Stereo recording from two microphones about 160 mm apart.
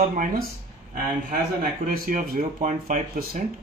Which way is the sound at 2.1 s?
55° right (ahead or behind).